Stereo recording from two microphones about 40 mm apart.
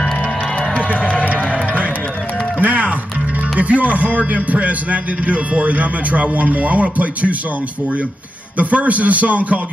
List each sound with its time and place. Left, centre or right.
0.8 s run: left
1.3 s music: right
3.5 s a man's voice: right
8.5 s a man's voice: right